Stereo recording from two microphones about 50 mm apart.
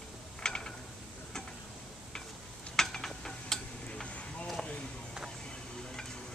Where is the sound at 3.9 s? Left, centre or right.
Left.